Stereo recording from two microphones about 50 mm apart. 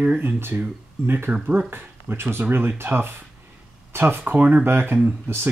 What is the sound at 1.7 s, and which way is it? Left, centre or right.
Speech, right.